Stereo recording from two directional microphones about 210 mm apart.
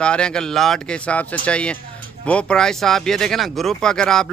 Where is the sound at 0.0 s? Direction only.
5° left (ahead or behind).